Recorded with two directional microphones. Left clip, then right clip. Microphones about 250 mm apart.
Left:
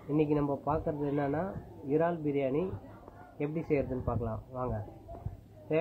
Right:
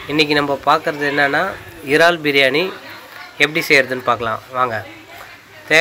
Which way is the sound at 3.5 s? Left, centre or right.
Right.